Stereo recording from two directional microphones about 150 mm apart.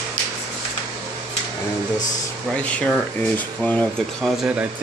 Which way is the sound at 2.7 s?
10° left (ahead or behind).